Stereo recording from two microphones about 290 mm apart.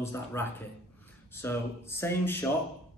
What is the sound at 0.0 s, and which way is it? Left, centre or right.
Speech, centre.